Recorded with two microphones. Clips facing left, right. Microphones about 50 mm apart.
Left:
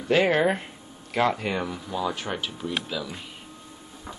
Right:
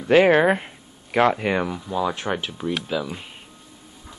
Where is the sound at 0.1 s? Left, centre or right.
Right.